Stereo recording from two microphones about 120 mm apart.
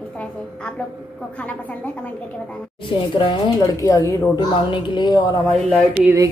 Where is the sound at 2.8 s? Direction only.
45° left (ahead or behind).